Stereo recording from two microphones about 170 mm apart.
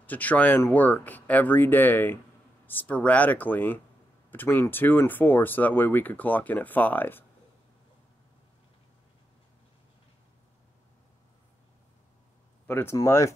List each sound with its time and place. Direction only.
0.0 s speech: 10° left (ahead or behind)
12.6 s speech: 15° left (ahead or behind)